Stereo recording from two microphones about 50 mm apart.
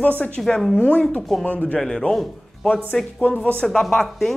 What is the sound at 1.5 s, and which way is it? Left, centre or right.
Speech, left.